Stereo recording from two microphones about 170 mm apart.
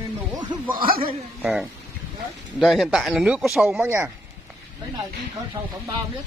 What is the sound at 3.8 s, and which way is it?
Speech, 15° right (ahead or behind).